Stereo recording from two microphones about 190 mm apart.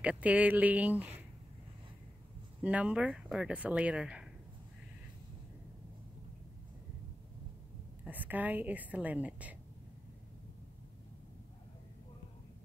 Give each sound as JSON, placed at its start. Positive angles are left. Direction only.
{"t": 0.0, "sound": "speech", "side_deg": -5}
{"t": 2.6, "sound": "speech", "side_deg": -5}
{"t": 8.0, "sound": "speech", "side_deg": -10}